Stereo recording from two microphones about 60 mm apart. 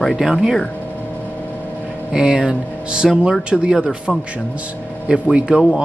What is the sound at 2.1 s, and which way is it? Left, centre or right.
Speech, centre.